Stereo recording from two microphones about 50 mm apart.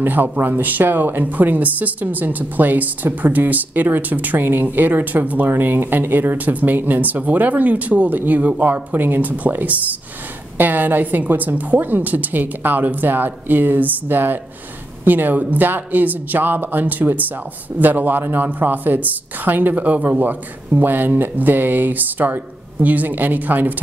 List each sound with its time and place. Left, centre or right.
0.0 s speech: right